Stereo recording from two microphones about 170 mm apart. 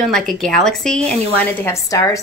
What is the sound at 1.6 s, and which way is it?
Speech, 20° left (ahead or behind).